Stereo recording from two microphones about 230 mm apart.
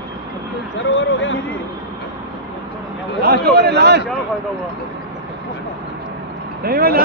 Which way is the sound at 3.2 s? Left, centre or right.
Right.